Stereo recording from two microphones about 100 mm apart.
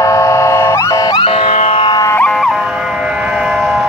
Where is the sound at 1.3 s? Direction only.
75° left (ahead or behind).